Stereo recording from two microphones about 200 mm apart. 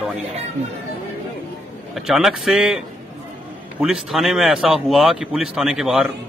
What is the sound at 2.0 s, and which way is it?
Speech, centre (ahead or behind).